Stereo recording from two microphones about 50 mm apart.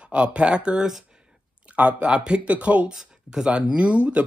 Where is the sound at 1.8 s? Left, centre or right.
Right.